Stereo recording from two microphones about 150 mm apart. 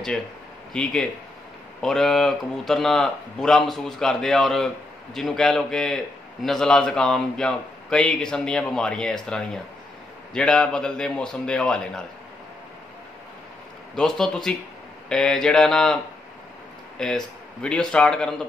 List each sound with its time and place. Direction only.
0.7 s speech: 5° left (ahead or behind)
13.9 s speech: 5° left (ahead or behind)
17.0 s a man's voice: 5° left (ahead or behind)